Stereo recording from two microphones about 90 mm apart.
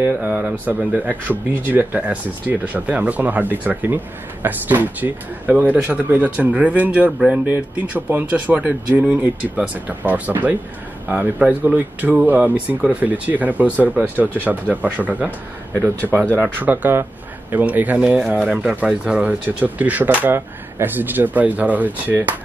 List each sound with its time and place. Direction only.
0.3 s speech: 15° right (ahead or behind)
16.3 s speech: 20° right (ahead or behind)